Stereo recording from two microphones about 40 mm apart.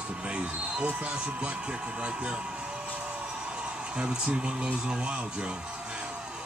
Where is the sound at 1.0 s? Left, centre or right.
Right.